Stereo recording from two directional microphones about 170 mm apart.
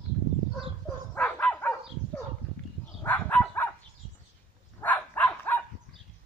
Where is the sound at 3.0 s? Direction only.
10° left (ahead or behind).